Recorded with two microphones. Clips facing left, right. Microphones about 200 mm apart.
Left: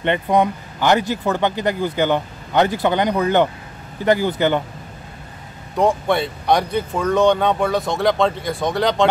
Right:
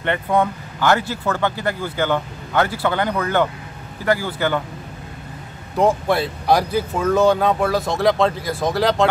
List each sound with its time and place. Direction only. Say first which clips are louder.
0.0 s speech: left 2 dB; 20° left (ahead or behind)
5.8 s speech: even; centre (ahead or behind)